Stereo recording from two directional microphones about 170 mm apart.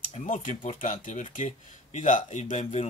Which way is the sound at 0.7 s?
45° left (ahead or behind).